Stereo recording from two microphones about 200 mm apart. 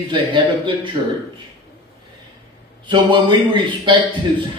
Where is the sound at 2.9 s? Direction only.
25° right (ahead or behind).